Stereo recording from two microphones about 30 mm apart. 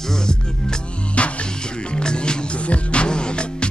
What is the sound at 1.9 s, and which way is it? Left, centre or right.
Music, left.